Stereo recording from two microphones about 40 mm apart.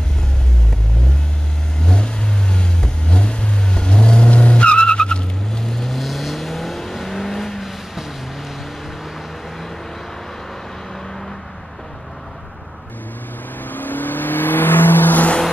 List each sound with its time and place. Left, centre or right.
1.9 s vehicle: left
5.6 s vehicle: centre
13.7 s vehicle: left